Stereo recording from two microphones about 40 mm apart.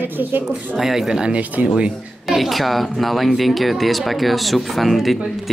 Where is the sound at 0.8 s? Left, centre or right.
Centre.